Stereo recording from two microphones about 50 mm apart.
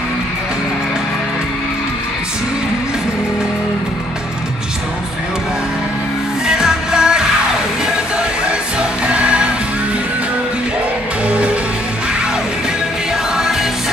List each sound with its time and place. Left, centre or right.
6.4 s music: centre
11.2 s music: right
13.4 s music: centre